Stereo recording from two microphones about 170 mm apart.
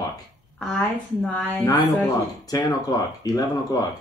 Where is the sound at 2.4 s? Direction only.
20° left (ahead or behind).